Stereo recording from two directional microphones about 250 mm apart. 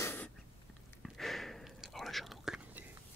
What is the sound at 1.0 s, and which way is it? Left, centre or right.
Whispering, centre.